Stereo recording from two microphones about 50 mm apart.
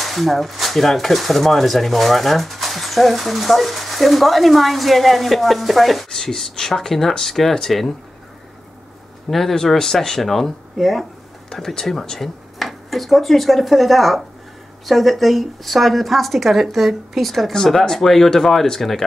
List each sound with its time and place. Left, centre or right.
0.0 s speech: centre
9.3 s speech: centre